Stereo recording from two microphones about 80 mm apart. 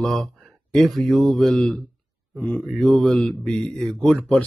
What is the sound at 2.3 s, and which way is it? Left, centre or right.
Speech, centre.